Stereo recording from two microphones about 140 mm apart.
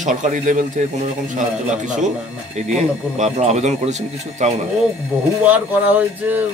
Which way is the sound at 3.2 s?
55° right (ahead or behind).